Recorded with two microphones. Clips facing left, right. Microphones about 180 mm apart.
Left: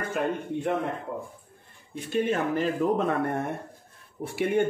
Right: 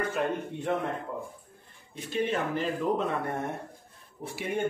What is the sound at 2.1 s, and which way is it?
Speech, 45° left (ahead or behind).